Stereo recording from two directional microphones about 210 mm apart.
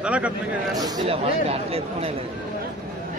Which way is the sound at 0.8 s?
25° right (ahead or behind).